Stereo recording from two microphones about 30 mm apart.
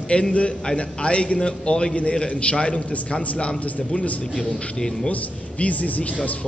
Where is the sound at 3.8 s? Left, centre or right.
Left.